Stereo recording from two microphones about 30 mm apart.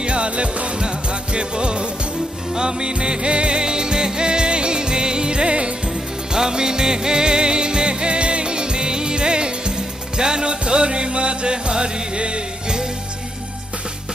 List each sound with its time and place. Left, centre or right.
0.0 s music: right